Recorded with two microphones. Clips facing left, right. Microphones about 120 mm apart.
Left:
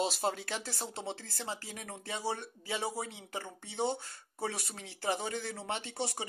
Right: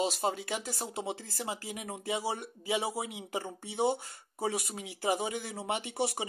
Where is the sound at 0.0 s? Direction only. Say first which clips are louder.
Right 2 dB; centre (ahead or behind).